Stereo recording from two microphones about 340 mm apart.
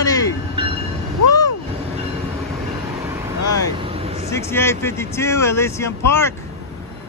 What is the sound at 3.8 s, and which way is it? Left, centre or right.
Vehicle, centre.